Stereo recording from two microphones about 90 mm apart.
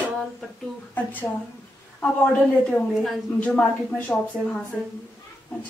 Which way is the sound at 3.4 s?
15° left (ahead or behind).